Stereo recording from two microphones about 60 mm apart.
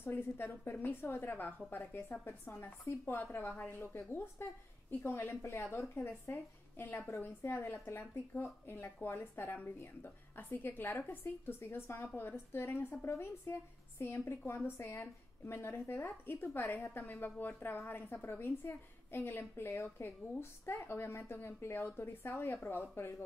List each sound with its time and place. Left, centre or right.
0.0 s a woman's voice: left